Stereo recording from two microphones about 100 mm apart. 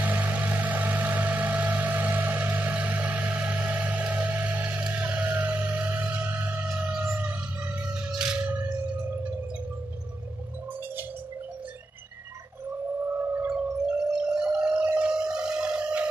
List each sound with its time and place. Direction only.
0.0 s vehicle: 15° right (ahead or behind)
5.0 s music: 20° right (ahead or behind)
8.5 s music: 20° right (ahead or behind)
13.2 s a sound: 20° right (ahead or behind)